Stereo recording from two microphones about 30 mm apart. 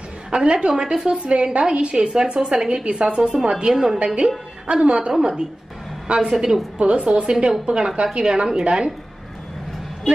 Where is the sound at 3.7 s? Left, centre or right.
Centre.